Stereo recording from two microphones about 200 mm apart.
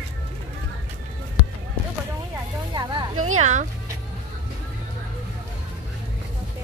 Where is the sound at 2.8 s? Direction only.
20° right (ahead or behind).